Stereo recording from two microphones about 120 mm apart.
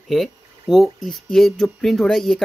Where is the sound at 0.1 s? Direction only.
Centre (ahead or behind).